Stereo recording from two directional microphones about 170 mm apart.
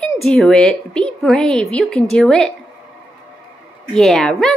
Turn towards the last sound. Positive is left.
turn(degrees=5)  # may be behind; listen again after turning